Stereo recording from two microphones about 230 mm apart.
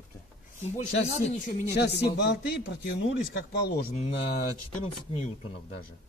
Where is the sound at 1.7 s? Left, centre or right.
Left.